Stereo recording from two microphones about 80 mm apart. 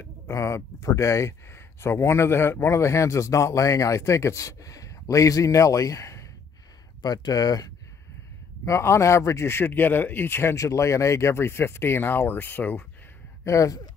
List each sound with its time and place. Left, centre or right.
0.0 s speech: left
7.0 s speech: left
8.6 s speech: left
10.5 s speech: left
13.4 s speech: left